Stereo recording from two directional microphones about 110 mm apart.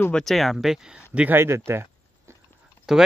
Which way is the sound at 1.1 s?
15° right (ahead or behind).